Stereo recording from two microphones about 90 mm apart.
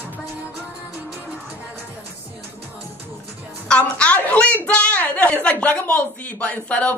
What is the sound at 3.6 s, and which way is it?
A woman's voice, 15° left (ahead or behind).